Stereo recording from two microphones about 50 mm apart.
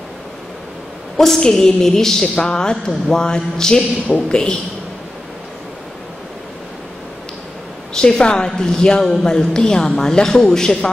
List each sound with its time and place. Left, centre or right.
1.1 s speech: centre
7.9 s speech: centre